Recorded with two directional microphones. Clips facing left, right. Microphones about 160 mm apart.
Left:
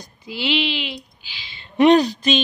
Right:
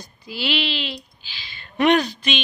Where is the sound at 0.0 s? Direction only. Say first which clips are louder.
Left 2 dB; 20° left (ahead or behind).